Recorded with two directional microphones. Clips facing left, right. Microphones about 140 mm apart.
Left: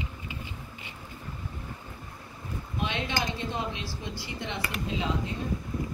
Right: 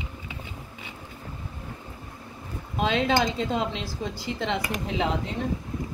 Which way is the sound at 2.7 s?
90° right.